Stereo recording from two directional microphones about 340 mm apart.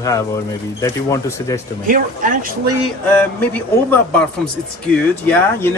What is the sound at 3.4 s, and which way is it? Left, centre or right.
Speech, centre.